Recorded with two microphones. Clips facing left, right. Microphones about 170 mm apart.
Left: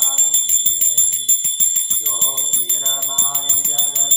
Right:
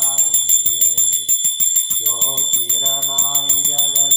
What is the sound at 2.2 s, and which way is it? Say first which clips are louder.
Bell: right 2 dB; 30° right (ahead or behind).